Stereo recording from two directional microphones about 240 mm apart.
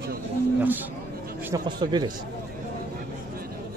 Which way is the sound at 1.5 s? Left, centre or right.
Centre.